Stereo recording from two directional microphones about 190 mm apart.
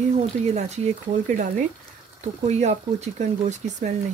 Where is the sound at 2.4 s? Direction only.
35° right (ahead or behind).